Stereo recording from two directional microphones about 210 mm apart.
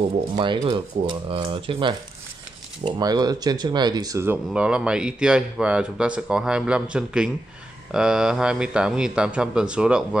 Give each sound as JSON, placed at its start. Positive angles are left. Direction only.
{"t": 0.4, "sound": "speech", "side_deg": -25}